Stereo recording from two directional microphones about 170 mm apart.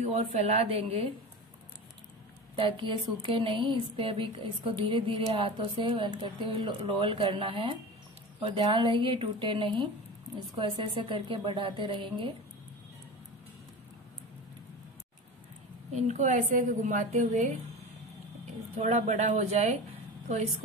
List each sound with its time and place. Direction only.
0.0 s speech: 40° right (ahead or behind)
2.5 s a woman's voice: 30° right (ahead or behind)
15.9 s a woman's voice: 45° right (ahead or behind)
18.8 s a woman's voice: 45° right (ahead or behind)